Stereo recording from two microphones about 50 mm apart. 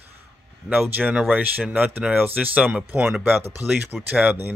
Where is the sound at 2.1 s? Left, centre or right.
Right.